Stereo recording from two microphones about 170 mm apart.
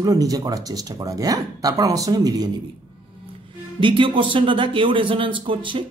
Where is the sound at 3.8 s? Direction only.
30° right (ahead or behind).